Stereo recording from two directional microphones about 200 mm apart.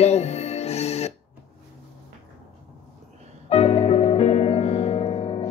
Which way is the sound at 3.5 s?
30° left (ahead or behind).